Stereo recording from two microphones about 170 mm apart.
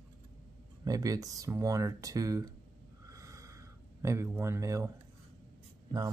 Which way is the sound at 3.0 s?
20° right (ahead or behind).